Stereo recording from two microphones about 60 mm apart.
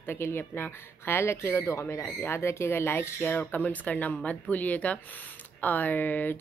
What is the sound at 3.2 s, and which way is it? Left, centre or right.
Speech, left.